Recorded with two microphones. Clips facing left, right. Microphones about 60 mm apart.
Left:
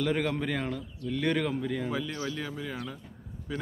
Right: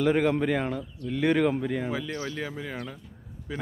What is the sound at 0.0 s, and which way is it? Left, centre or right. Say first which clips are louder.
Speech: right 6 dB; centre.